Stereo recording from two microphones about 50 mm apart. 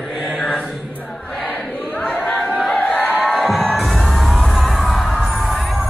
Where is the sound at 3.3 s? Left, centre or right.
Centre.